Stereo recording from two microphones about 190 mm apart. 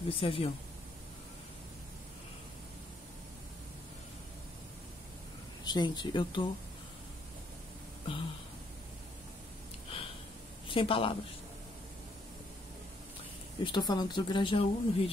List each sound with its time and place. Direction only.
0.2 s speech: 30° left (ahead or behind)
5.6 s speech: 20° left (ahead or behind)
8.1 s speech: 30° left (ahead or behind)
9.9 s a sound: 30° left (ahead or behind)
10.7 s speech: 30° left (ahead or behind)
13.7 s speech: 20° left (ahead or behind)